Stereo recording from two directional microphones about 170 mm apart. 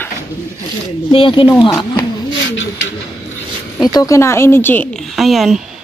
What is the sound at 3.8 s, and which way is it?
A woman's voice, 20° left (ahead or behind).